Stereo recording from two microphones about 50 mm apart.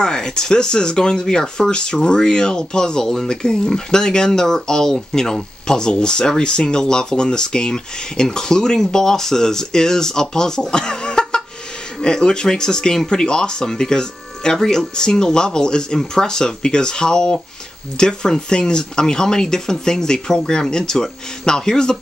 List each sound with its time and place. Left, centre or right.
0.0 s speech: centre